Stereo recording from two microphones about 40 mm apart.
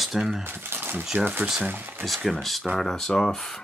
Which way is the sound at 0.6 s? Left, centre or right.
Right.